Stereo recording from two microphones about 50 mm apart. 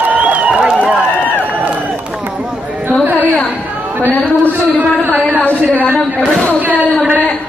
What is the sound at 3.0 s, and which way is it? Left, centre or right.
Music, right.